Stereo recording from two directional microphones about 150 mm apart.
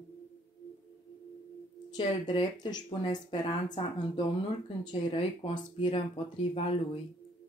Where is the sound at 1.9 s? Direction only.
30° left (ahead or behind).